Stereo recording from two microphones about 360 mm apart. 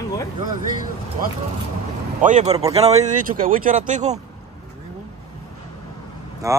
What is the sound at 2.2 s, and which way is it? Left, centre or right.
Speech, centre.